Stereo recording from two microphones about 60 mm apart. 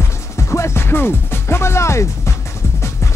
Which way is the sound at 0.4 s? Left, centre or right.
Left.